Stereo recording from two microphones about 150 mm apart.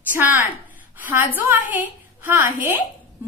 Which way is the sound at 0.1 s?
15° right (ahead or behind).